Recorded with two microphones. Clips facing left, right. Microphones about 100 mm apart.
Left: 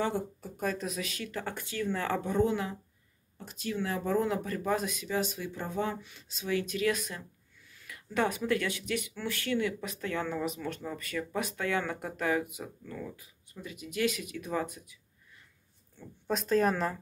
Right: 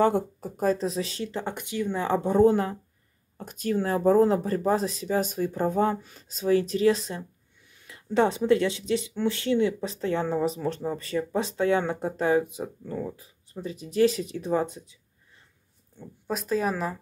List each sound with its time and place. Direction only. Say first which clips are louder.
0.0 s speech: right 9 dB; 50° right (ahead or behind)
0.6 s speech: right 8 dB; 30° right (ahead or behind)
2.2 s speech: right 10 dB; 40° right (ahead or behind)
16.3 s speech: even; 5° right (ahead or behind)